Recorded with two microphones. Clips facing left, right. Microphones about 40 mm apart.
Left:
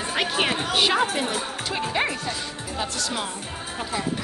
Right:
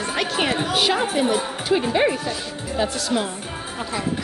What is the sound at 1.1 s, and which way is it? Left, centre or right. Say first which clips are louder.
Speech: right 5 dB; centre.